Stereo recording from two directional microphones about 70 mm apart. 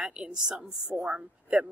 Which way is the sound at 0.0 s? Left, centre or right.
Centre.